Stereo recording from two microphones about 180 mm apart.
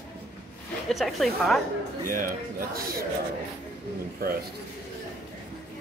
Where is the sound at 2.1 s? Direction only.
55° right (ahead or behind).